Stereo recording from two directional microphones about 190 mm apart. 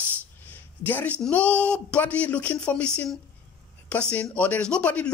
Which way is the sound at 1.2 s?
5° left (ahead or behind).